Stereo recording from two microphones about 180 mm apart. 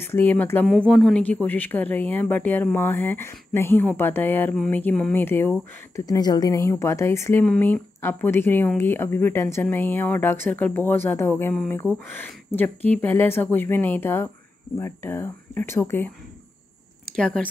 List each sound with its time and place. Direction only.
0.0 s speech: 10° left (ahead or behind)
17.1 s speech: 5° left (ahead or behind)